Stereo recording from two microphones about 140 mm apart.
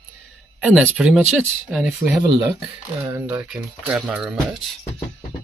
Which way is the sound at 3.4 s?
5° right (ahead or behind).